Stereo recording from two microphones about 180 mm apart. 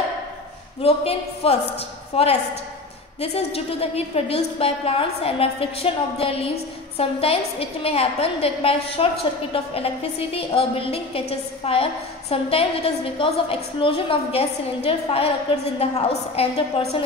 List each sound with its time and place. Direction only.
0.8 s a woman's voice: 35° left (ahead or behind)